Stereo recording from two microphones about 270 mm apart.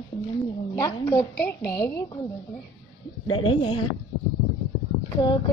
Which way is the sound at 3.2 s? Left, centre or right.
Centre.